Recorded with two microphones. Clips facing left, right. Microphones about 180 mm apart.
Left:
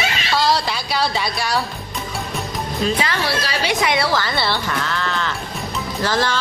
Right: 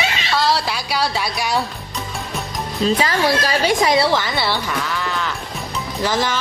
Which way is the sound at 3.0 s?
45° right (ahead or behind).